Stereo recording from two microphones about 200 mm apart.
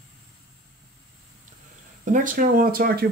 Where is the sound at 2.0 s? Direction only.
40° right (ahead or behind).